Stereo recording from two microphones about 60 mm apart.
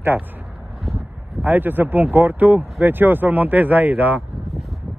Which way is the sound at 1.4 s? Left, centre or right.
Right.